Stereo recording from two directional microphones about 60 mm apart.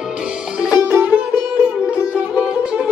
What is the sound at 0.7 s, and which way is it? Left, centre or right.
Music, right.